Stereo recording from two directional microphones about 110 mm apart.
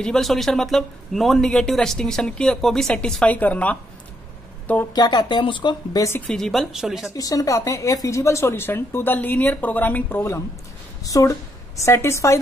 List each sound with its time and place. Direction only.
0.0 s speech: 5° left (ahead or behind)
4.9 s speech: 40° left (ahead or behind)
6.2 s speech: 5° left (ahead or behind)
7.2 s a woman's voice: 30° left (ahead or behind)